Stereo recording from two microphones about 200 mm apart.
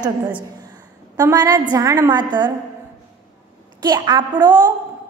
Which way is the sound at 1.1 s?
20° right (ahead or behind).